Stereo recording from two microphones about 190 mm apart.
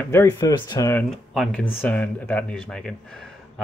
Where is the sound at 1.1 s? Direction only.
Centre (ahead or behind).